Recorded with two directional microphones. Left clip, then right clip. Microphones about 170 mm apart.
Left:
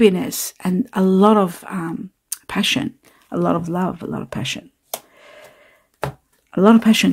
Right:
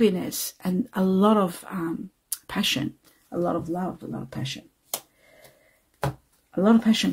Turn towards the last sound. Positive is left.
turn(degrees=50)  # may be behind; listen again after turning